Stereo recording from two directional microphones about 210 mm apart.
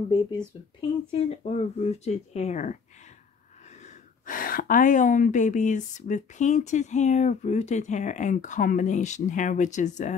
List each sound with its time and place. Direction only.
0.7 s speech: 25° left (ahead or behind)
4.3 s speech: 40° left (ahead or behind)